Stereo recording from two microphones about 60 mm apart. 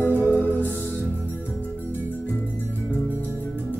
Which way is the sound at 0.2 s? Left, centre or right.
Left.